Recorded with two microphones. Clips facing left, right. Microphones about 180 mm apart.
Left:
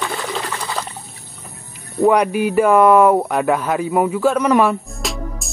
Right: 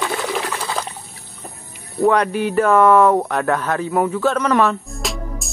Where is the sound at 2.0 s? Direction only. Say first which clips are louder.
Left 2 dB; 10° left (ahead or behind).